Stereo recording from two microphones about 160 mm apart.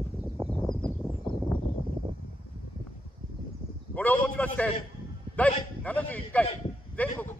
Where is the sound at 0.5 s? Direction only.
5° left (ahead or behind).